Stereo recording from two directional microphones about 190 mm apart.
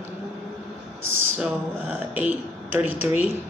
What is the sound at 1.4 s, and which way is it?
Speech, 10° right (ahead or behind).